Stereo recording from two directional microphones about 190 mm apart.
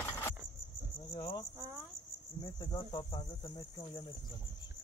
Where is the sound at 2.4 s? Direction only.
20° left (ahead or behind).